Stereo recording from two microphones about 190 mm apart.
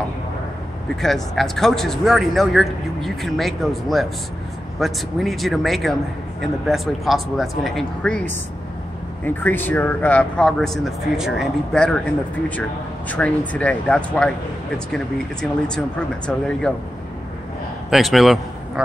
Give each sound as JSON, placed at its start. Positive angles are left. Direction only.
{"t": 1.0, "sound": "speech", "side_deg": 0}
{"t": 13.1, "sound": "speech", "side_deg": 5}
{"t": 15.4, "sound": "speech", "side_deg": 5}
{"t": 17.8, "sound": "speech", "side_deg": 0}